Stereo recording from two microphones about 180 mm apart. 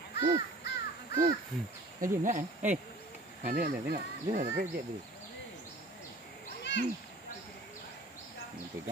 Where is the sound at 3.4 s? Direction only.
55° right (ahead or behind).